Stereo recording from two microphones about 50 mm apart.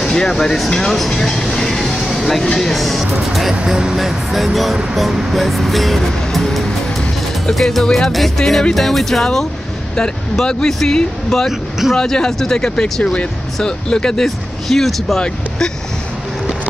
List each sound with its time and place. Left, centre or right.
0.0 s speech: centre
3.7 s speech: centre
4.0 s music: centre
9.9 s speech: centre
13.0 s speech: left; by 15.1 s centre